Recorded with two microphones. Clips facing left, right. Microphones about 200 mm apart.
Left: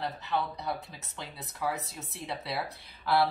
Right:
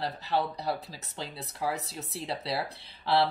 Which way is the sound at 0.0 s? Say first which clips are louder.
Right 2 dB; 35° right (ahead or behind).